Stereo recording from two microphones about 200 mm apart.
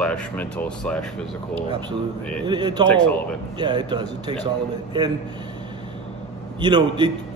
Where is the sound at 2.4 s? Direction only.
20° right (ahead or behind).